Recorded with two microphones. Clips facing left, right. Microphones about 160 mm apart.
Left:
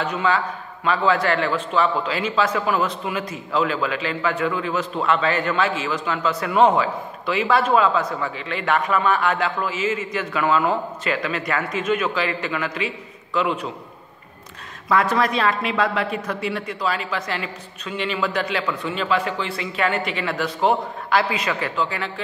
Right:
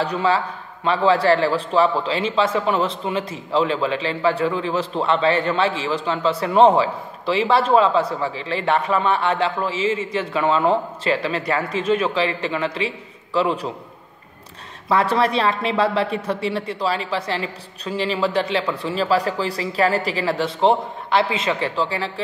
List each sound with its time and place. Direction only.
0.0 s a woman's voice: 35° right (ahead or behind)
14.9 s a woman's voice: 30° right (ahead or behind)